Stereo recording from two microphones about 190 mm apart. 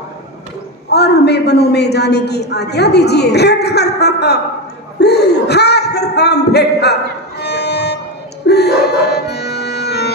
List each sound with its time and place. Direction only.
0.8 s a woman's voice: 60° left (ahead or behind)
5.0 s a sound: 60° left (ahead or behind)
8.5 s music: 60° left (ahead or behind)